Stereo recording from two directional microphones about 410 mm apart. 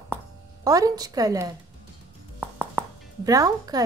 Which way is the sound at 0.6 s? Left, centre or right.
Centre.